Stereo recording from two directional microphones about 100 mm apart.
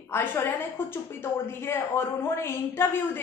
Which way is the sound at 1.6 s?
25° left (ahead or behind).